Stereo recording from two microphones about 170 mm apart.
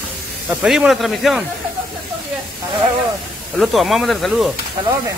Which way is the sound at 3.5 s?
Centre (ahead or behind).